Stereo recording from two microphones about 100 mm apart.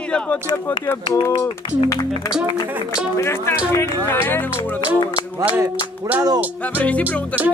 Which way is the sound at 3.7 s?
25° left (ahead or behind).